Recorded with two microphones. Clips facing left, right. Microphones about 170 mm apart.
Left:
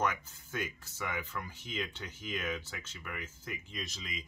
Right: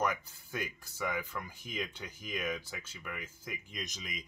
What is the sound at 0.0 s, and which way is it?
Speech, 10° right (ahead or behind).